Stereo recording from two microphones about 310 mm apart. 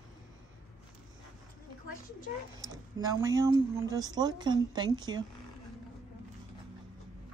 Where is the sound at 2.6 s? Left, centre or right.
Centre.